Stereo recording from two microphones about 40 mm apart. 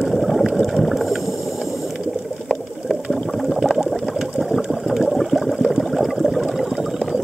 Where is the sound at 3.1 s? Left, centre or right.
Centre.